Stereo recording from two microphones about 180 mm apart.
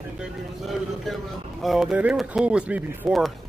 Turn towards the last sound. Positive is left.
turn(degrees=0)  # may be behind; listen again after turning